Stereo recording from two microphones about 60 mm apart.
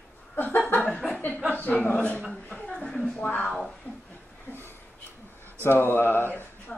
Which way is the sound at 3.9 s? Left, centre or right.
Left.